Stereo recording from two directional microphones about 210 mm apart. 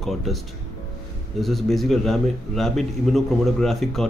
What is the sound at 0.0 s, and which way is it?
Speech, centre (ahead or behind).